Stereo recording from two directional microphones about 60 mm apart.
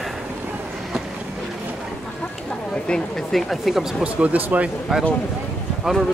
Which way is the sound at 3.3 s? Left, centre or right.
Centre.